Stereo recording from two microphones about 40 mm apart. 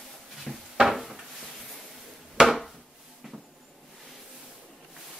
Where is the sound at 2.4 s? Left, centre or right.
Centre.